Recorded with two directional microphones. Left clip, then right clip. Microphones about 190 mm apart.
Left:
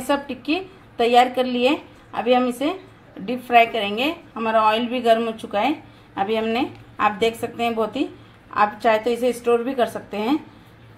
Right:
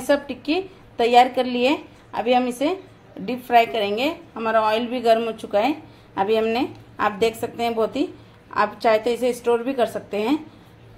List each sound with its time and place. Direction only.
0.0 s a woman's voice: 15° right (ahead or behind)